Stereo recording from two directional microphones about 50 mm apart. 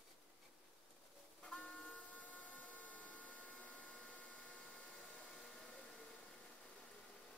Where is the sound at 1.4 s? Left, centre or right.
Centre.